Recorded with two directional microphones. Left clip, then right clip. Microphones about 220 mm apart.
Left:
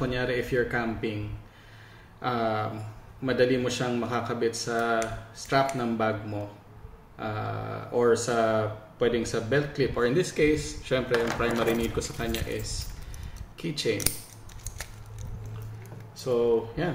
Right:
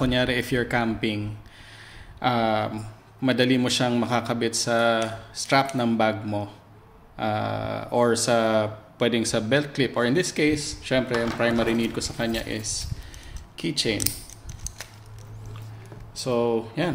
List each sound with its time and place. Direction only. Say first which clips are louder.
0.0 s speech: right 5 dB; 50° right (ahead or behind)
2.2 s speech: right 5 dB; 45° right (ahead or behind)
7.2 s speech: right 7 dB; 45° right (ahead or behind)
16.2 s speech: right 1 dB; 50° right (ahead or behind)